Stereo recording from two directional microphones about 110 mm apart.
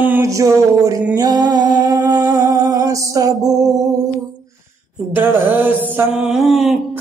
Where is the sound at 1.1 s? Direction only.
35° right (ahead or behind).